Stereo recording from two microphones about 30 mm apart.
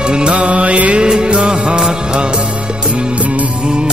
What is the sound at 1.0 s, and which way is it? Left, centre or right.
Music, right.